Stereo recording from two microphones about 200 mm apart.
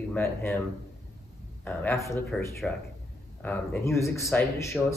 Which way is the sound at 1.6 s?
10° left (ahead or behind).